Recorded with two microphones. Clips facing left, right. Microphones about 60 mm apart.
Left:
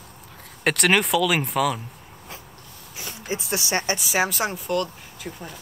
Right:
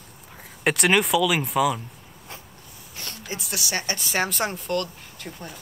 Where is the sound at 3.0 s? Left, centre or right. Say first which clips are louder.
Left 1 dB; centre.